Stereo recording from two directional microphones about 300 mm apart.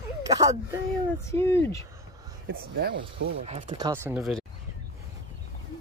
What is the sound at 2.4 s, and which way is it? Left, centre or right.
Speech, right.